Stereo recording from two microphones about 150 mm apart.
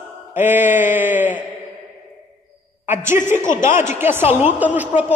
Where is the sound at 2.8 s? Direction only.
15° right (ahead or behind).